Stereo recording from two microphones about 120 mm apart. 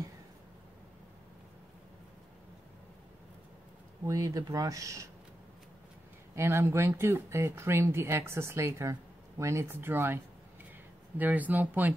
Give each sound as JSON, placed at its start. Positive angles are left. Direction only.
{"t": 4.0, "sound": "speech", "side_deg": -30}
{"t": 6.3, "sound": "speech", "side_deg": -20}